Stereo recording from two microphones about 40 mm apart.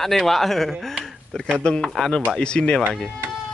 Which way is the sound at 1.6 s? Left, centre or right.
Left.